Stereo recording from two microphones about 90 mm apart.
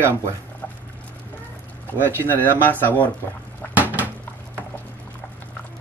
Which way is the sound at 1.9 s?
25° right (ahead or behind).